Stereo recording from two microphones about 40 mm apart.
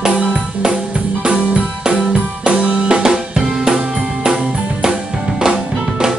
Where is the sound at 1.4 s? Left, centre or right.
Right.